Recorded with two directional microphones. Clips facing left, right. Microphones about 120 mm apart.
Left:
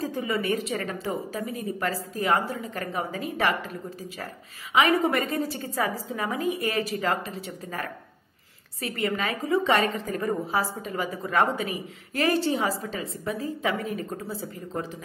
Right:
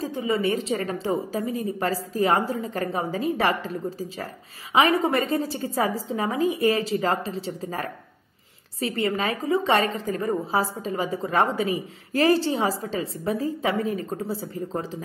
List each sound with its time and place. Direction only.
0.0 s a woman's voice: 25° right (ahead or behind)
4.7 s a woman's voice: 30° right (ahead or behind)